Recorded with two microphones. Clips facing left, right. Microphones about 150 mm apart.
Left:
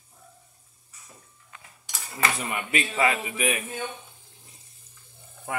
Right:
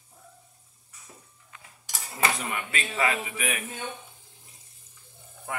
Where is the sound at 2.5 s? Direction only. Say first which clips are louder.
Left 3 dB; 20° left (ahead or behind).